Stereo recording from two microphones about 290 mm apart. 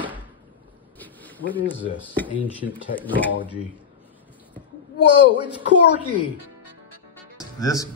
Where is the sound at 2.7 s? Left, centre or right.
Centre.